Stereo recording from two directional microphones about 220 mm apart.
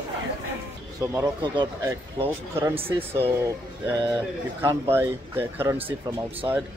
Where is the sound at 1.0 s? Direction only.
15° right (ahead or behind).